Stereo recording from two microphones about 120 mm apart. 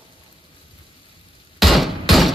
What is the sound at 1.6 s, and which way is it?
Hammer, centre (ahead or behind).